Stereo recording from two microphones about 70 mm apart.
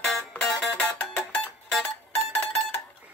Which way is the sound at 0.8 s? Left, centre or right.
Left.